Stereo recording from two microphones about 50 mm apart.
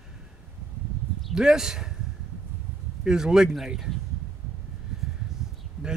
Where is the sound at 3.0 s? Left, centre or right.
Centre.